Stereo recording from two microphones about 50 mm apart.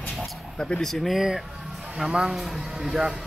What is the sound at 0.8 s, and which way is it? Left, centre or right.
Speech, centre.